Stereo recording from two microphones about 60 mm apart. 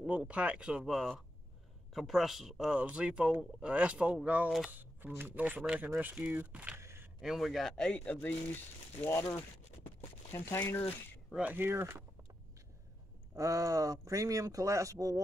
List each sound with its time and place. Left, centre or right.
0.0 s speech: centre
0.8 s speech: centre
2.7 s speech: centre
6.8 s a sound: right
7.2 s speech: centre
7.8 s speech: left
10.3 s speech: left
11.4 s speech: right
13.4 s speech: right